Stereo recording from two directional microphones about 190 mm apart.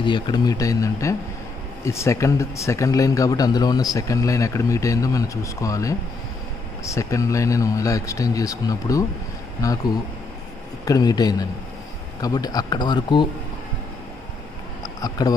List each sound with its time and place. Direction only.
0.0 s speech: 25° left (ahead or behind)
15.0 s speech: 20° left (ahead or behind)